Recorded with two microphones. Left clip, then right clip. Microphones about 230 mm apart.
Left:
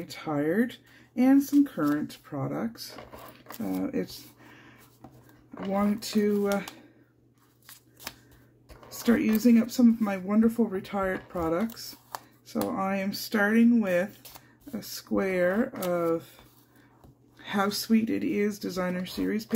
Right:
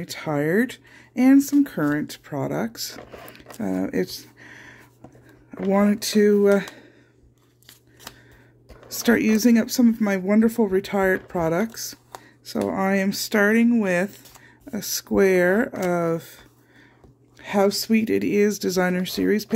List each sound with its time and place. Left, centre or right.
0.0 s speech: right
3.7 s a sound: right
5.7 s speech: right
8.8 s speech: right
17.4 s speech: right